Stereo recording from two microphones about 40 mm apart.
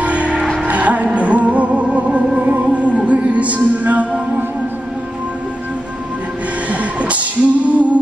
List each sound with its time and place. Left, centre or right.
0.0 s music: right
6.7 s music: right